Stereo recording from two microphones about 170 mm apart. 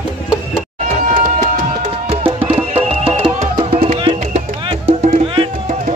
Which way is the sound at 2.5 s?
35° right (ahead or behind).